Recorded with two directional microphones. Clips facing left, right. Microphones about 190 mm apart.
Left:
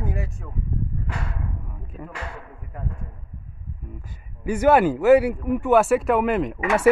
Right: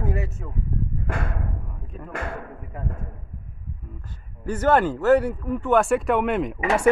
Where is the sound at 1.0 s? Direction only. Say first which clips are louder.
Right 3 dB; 50° right (ahead or behind).